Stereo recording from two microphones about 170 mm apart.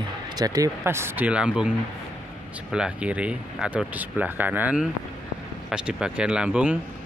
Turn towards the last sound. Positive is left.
turn(degrees=-5)  # may be behind; listen again after turning